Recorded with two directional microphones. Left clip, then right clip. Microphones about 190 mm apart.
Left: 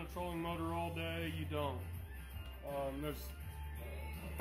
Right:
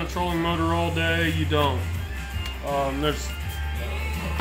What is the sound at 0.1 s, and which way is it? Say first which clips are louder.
Speech: right 16 dB; 20° left (ahead or behind).